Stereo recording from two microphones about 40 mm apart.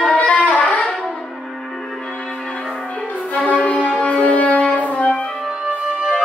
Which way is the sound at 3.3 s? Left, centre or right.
Left.